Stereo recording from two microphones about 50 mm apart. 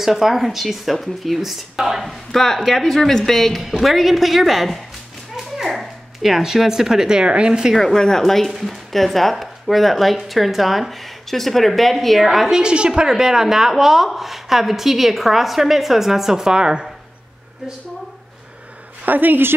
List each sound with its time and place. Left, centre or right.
0.0 s speech: centre
7.7 s speech: centre
19.0 s a woman's voice: right